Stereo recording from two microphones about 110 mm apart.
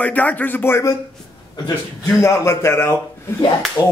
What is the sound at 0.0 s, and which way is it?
Speech, 15° left (ahead or behind).